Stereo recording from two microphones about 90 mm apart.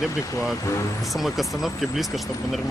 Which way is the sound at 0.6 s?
35° left (ahead or behind).